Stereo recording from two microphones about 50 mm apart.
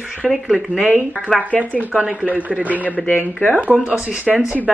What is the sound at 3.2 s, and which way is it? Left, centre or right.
Speech, left.